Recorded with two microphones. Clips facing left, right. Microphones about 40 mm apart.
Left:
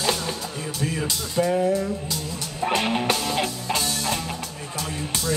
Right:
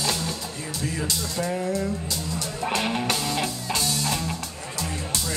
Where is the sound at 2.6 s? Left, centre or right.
Centre.